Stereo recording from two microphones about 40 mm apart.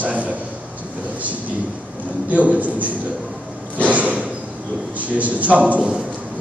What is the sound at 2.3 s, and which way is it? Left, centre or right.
Speech, right.